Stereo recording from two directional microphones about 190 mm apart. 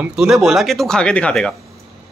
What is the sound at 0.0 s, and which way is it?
Speech, 5° right (ahead or behind).